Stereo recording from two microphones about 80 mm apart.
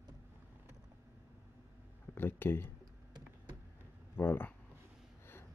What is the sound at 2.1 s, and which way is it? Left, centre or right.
Speech, left.